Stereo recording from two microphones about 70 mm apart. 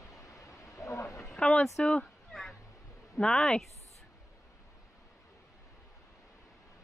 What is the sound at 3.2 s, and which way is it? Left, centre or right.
Speech, centre.